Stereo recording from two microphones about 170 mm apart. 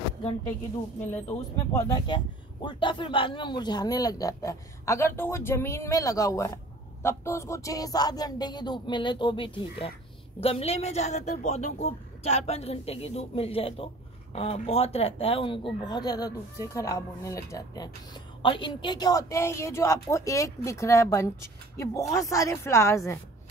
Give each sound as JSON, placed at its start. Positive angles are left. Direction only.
{"t": 1.7, "sound": "a woman's voice", "side_deg": 20}